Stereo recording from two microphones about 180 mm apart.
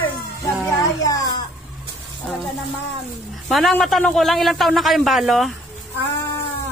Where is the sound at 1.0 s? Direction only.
20° left (ahead or behind).